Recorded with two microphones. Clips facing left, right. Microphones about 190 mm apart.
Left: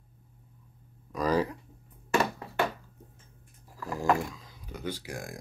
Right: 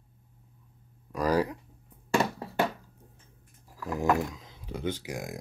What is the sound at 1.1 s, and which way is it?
Speech, 10° right (ahead or behind).